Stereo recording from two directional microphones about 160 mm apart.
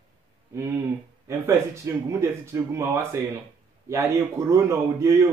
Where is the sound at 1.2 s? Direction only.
20° right (ahead or behind).